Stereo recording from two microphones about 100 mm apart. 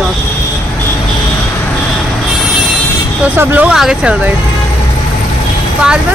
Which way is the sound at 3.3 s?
15° right (ahead or behind).